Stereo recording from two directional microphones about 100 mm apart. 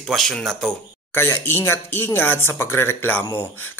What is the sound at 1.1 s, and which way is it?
A man's voice, 25° left (ahead or behind).